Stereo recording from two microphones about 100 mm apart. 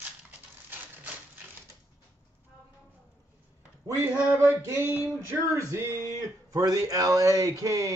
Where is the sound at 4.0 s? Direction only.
25° right (ahead or behind).